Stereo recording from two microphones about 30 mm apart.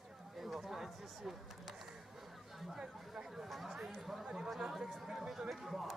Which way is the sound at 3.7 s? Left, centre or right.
Centre.